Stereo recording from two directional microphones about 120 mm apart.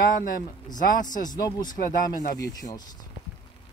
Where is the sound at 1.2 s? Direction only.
30° left (ahead or behind).